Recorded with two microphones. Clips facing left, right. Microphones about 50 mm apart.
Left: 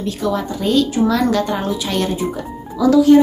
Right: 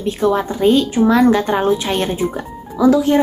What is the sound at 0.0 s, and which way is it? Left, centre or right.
A woman's voice, right.